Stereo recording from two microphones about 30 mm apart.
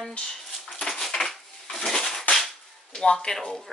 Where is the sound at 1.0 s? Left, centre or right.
Centre.